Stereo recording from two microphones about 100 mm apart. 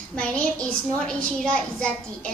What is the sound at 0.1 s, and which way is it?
A woman's voice, 10° left (ahead or behind).